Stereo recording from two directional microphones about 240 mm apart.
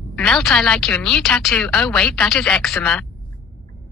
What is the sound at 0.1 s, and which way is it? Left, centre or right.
Speech, centre.